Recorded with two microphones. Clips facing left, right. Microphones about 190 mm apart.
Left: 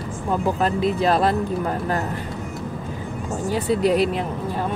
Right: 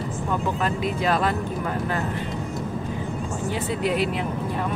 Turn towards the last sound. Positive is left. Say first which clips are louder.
# left 5 dB
turn(degrees=35)  # may be behind; listen again after turning